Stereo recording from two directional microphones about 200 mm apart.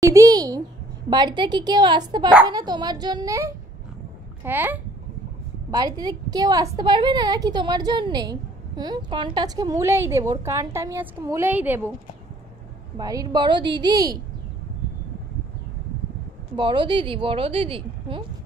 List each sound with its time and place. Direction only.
0.0 s a child's voice: 15° right (ahead or behind)
12.9 s a woman's voice: 20° right (ahead or behind)
16.5 s a woman's voice: 25° right (ahead or behind)